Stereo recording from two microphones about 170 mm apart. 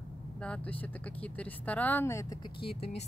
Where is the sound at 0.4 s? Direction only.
5° left (ahead or behind).